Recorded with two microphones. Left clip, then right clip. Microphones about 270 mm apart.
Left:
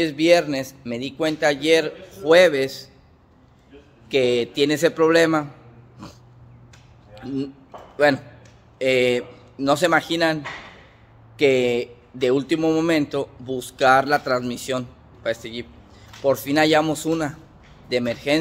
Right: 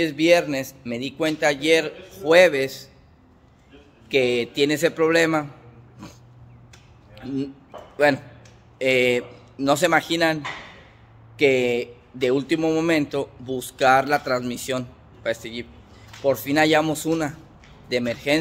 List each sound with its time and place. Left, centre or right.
0.0 s a man's voice: centre
4.1 s speech: centre
6.0 s dog: centre
7.2 s a man's voice: centre